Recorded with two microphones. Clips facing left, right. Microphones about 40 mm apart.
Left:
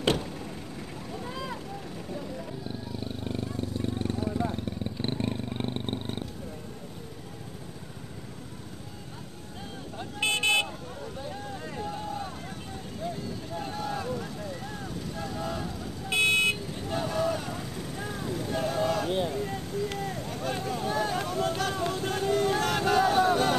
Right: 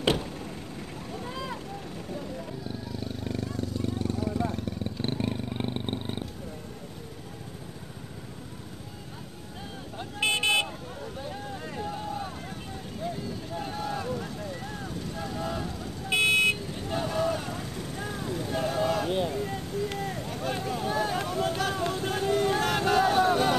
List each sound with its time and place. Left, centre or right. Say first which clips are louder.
0.0 s vehicle: even; centre
2.9 s vehicle: even; left
5.1 s vehicle: even; centre
10.1 s vehicle: even; centre